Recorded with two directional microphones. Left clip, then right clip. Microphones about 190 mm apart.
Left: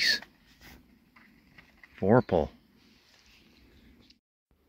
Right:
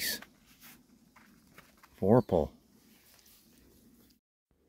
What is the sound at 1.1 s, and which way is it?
Walk, 20° right (ahead or behind).